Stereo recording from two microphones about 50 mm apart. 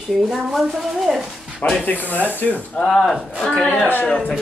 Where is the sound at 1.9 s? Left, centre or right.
Left.